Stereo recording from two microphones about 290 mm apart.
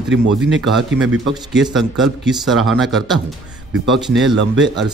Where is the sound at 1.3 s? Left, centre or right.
Centre.